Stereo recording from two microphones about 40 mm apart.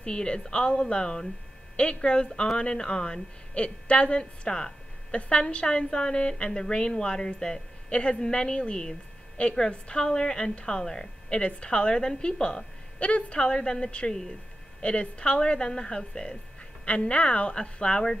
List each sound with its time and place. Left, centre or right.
0.0 s a woman's voice: left
3.5 s a woman's voice: left
7.9 s a woman's voice: left
16.8 s a woman's voice: left